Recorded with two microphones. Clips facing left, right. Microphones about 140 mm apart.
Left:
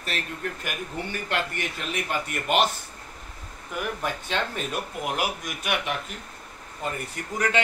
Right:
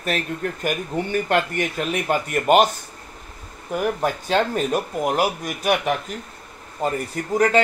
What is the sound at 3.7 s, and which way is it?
Speech, 40° right (ahead or behind).